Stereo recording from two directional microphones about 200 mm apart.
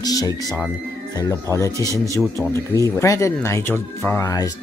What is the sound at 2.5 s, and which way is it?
Speech, 15° left (ahead or behind).